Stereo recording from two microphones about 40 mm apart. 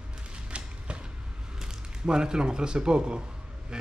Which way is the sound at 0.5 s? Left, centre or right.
Right.